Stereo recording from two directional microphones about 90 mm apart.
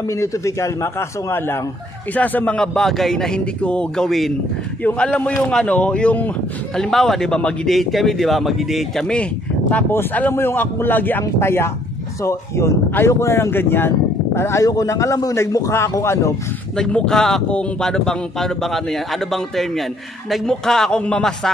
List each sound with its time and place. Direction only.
0.1 s a man's voice: 35° left (ahead or behind); by 6.3 s 15° left (ahead or behind)
6.8 s speech: 5° left (ahead or behind)
9.0 s speech: 10° left (ahead or behind); by 16.3 s 30° left (ahead or behind)
16.7 s speech: 10° left (ahead or behind)